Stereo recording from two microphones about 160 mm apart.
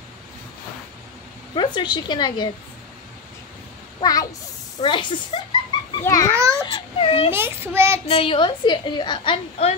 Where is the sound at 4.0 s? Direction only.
25° left (ahead or behind).